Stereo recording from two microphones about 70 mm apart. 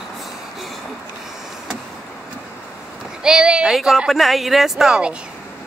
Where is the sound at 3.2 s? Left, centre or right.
Centre.